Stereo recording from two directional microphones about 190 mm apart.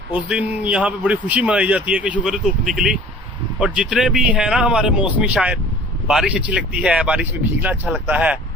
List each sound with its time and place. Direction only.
0.3 s speech: 5° right (ahead or behind)